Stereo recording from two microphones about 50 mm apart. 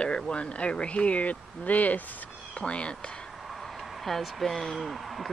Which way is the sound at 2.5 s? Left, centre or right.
Left.